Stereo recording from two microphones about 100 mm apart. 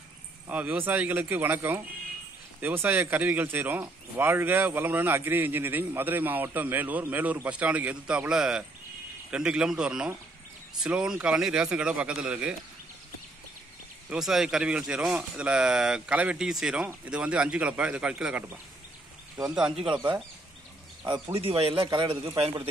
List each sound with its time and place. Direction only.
0.5 s speech: 15° right (ahead or behind)
14.1 s speech: 5° right (ahead or behind)
21.3 s speech: 70° right (ahead or behind)
21.8 s a man's voice: 50° right (ahead or behind)